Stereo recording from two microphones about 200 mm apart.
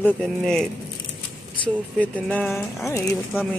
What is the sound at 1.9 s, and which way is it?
Speech, 5° left (ahead or behind).